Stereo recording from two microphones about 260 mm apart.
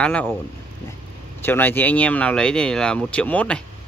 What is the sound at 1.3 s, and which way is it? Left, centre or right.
Speech, centre.